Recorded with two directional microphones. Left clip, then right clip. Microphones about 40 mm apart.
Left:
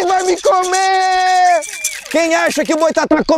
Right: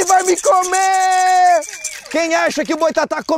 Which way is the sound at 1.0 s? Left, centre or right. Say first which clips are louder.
Right 1 dB; right.